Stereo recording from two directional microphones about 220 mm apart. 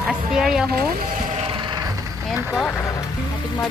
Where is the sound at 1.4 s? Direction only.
20° right (ahead or behind).